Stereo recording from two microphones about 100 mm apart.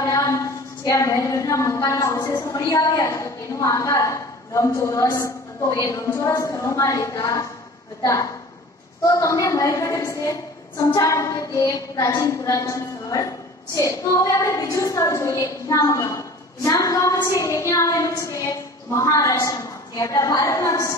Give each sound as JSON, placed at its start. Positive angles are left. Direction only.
{"t": 0.0, "sound": "a woman's voice", "side_deg": 35}